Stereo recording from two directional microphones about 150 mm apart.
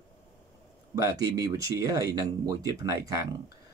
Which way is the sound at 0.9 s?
25° right (ahead or behind).